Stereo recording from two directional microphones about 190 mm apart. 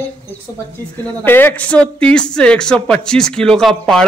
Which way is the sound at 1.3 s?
10° left (ahead or behind).